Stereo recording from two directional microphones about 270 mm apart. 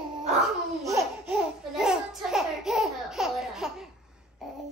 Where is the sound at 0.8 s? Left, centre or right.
Centre.